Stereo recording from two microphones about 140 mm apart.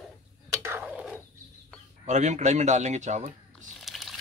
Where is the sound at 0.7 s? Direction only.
10° right (ahead or behind).